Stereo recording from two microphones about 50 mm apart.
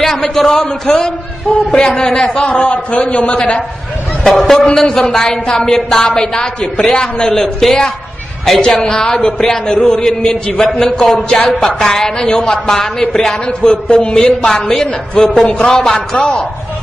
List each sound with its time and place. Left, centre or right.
0.3 s a man's voice: centre
4.2 s a man's voice: centre
11.2 s a man's voice: centre
11.6 s a man's voice: centre
15.1 s a man's voice: centre